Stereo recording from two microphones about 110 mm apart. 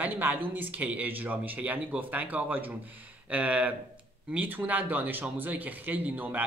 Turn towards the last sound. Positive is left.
turn(degrees=-15)  # may be behind; listen again after turning